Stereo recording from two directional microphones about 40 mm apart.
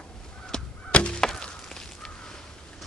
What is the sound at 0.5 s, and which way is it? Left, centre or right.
Crow, centre.